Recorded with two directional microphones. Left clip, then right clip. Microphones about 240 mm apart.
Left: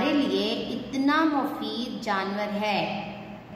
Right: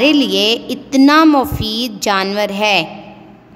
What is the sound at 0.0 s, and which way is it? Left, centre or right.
A woman's voice, right.